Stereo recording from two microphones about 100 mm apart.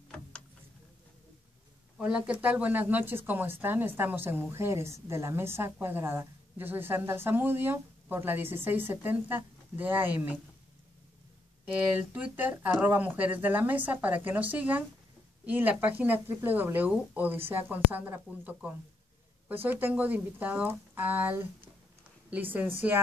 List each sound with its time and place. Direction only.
2.0 s speech: 10° right (ahead or behind)
11.9 s speech: 15° right (ahead or behind)